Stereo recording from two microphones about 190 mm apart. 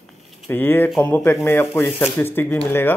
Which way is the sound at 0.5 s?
10° left (ahead or behind).